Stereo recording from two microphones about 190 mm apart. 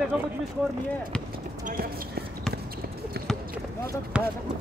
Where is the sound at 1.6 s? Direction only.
50° right (ahead or behind).